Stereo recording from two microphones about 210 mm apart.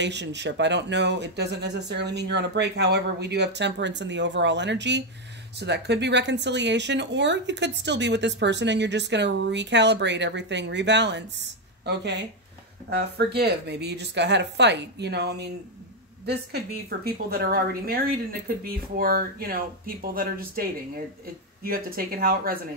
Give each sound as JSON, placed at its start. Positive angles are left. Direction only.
{"t": 0.0, "sound": "a woman's voice", "side_deg": -55}
{"t": 21.6, "sound": "a woman's voice", "side_deg": -45}